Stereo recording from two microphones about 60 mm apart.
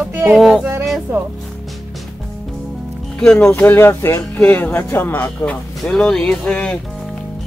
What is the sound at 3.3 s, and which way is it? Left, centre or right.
Speech, centre.